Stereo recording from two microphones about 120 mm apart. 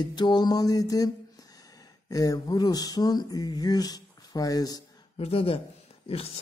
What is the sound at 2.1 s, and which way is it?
Speech, 30° left (ahead or behind).